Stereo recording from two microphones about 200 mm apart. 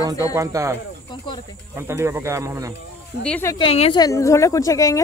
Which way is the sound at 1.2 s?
20° left (ahead or behind).